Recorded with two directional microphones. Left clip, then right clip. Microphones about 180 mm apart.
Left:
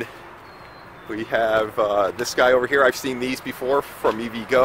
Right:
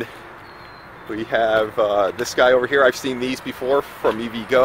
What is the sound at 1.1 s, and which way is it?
Speech, 10° right (ahead or behind).